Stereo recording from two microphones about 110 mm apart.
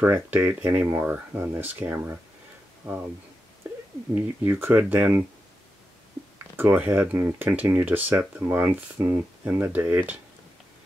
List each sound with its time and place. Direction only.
0.0 s speech: 15° right (ahead or behind)
4.1 s speech: 15° right (ahead or behind)
6.5 s speech: 15° right (ahead or behind)